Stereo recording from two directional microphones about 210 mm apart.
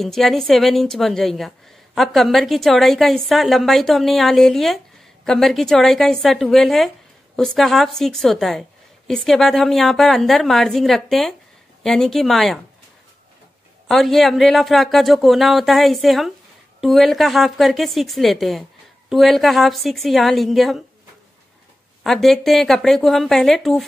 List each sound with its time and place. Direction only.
0.0 s a woman's voice: centre (ahead or behind)
13.8 s a woman's voice: centre (ahead or behind)
22.0 s a woman's voice: centre (ahead or behind)